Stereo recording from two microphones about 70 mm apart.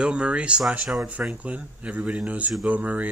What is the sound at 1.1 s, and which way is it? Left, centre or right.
Speech, centre.